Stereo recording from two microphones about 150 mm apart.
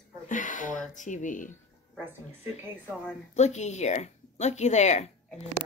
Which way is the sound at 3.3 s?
50° left (ahead or behind).